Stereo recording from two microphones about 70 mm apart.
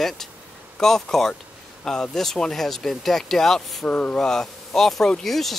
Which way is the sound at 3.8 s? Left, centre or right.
Left.